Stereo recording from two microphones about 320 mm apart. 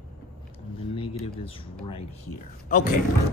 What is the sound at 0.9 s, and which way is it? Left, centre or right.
Speech, centre.